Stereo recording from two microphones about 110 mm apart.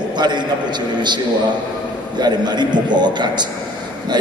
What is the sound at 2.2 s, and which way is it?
A man's voice, 40° right (ahead or behind).